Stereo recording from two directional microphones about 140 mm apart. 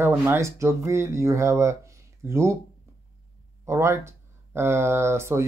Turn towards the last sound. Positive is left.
turn(degrees=-20)  # may be behind; listen again after turning